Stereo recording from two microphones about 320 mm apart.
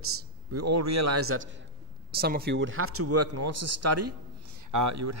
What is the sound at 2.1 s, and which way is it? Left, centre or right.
Speech, right.